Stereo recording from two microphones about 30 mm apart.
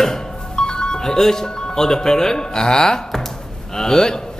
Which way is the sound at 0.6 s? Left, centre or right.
Left.